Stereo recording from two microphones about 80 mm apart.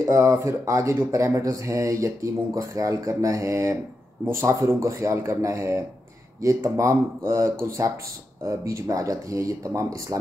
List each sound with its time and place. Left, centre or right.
0.0 s speech: right